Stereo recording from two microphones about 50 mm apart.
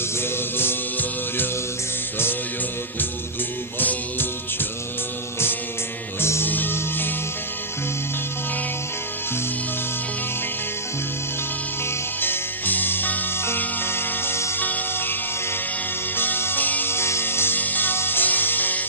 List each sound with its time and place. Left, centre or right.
0.2 s music: left
6.4 s music: left
12.2 s music: left
13.8 s music: left
14.6 s music: left
16.2 s music: left
16.9 s music: left
17.6 s music: left